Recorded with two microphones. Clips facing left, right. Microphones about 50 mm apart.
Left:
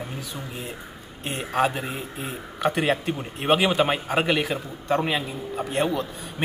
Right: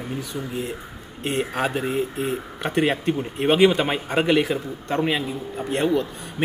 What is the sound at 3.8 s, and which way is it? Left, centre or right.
A man's voice, centre.